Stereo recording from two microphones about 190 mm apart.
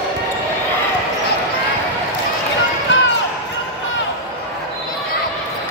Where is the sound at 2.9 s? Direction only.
75° left (ahead or behind).